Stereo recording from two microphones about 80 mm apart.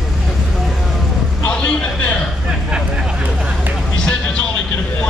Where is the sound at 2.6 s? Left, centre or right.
Centre.